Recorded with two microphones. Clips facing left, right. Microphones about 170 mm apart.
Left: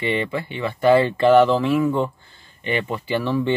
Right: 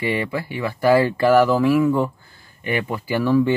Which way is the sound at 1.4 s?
10° right (ahead or behind).